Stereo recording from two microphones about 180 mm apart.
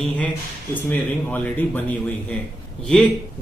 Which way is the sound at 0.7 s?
10° left (ahead or behind).